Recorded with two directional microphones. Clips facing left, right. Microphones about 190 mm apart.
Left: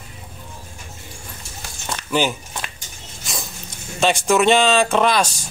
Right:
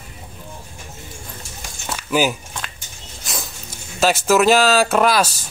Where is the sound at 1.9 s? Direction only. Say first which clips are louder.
Right 2 dB; 5° right (ahead or behind).